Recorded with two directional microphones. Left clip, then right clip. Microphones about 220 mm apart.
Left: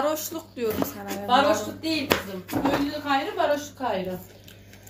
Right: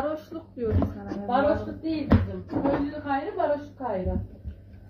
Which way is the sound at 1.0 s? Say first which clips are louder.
Left 5 dB; 35° left (ahead or behind).